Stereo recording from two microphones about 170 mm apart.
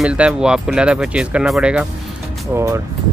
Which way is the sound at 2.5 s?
15° right (ahead or behind).